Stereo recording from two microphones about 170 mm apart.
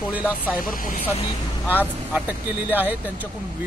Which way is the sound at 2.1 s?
10° right (ahead or behind).